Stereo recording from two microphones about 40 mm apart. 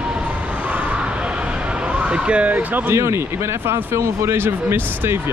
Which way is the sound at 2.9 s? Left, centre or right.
Right.